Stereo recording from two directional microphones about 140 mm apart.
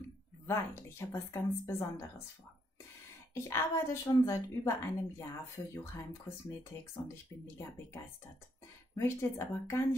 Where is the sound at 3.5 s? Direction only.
20° left (ahead or behind).